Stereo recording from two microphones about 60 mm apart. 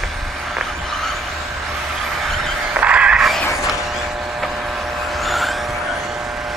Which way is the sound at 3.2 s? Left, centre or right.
Centre.